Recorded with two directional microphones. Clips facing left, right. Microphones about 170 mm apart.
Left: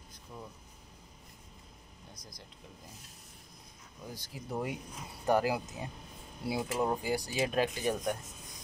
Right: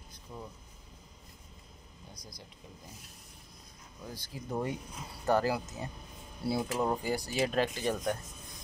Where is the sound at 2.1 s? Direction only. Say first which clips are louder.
Right 2 dB; 20° left (ahead or behind).